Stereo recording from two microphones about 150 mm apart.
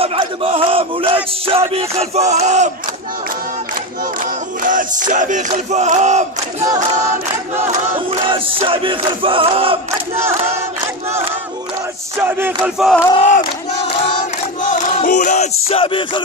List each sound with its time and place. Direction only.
0.0 s a sound: 40° right (ahead or behind)
4.2 s battle cry: 60° right (ahead or behind)
6.6 s a sound: 20° right (ahead or behind)
8.1 s battle cry: 35° right (ahead or behind)
9.8 s battle cry: 15° right (ahead or behind)
12.2 s battle cry: 15° right (ahead or behind)
12.7 s speech: centre (ahead or behind)
14.6 s battle cry: 55° left (ahead or behind)
15.8 s music: 35° left (ahead or behind)